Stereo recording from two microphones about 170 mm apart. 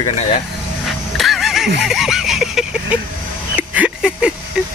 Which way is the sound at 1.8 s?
Centre (ahead or behind).